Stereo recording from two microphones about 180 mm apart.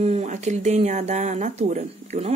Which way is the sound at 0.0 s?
40° right (ahead or behind).